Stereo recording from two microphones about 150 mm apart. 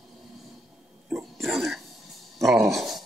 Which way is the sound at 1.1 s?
Centre (ahead or behind).